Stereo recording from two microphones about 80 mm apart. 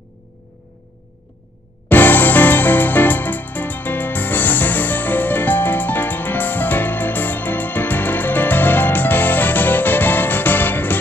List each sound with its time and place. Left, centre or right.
1.9 s music: left